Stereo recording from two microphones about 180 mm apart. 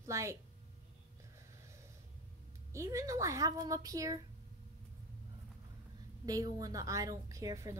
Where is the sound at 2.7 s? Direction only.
15° right (ahead or behind).